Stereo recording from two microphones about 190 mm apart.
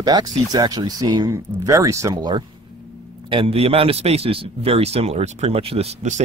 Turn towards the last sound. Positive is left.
turn(degrees=-35)  # may be behind; listen again after turning